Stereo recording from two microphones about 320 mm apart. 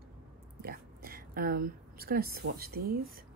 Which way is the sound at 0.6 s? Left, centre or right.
Right.